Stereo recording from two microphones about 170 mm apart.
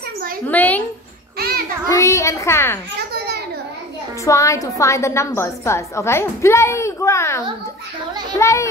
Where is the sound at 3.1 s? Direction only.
70° right (ahead or behind).